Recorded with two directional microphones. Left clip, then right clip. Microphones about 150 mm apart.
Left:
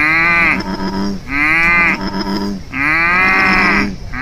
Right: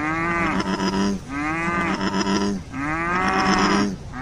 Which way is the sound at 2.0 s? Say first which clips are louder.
Left 2 dB; 40° right (ahead or behind).